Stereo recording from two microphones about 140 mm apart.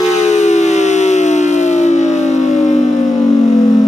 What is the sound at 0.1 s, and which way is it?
Siren, 55° left (ahead or behind).